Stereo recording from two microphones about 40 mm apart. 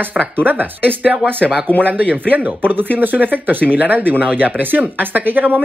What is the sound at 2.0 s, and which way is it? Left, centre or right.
Speech, right.